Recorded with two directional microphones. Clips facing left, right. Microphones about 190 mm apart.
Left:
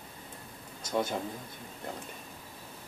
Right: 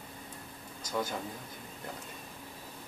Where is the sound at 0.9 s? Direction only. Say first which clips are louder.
Left 4 dB; 25° left (ahead or behind).